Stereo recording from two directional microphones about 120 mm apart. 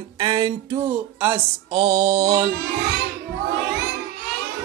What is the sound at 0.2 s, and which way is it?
Music, 35° right (ahead or behind).